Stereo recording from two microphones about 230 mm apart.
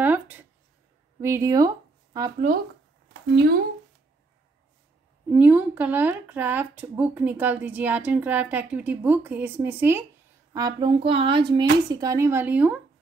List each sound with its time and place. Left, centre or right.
0.0 s a sound: centre
1.2 s speech: centre
3.1 s speech: right
5.3 s speech: centre